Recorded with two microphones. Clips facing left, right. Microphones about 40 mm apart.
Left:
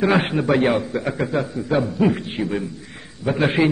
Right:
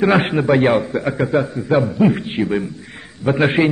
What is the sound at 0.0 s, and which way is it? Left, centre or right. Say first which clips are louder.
A man's voice: right 3 dB; centre.